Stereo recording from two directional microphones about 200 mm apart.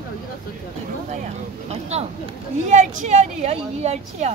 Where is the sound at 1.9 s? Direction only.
30° right (ahead or behind).